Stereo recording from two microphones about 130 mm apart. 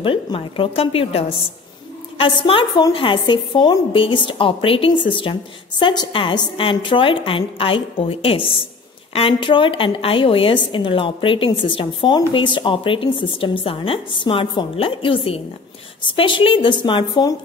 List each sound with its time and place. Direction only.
0.0 s a woman's voice: 40° left (ahead or behind)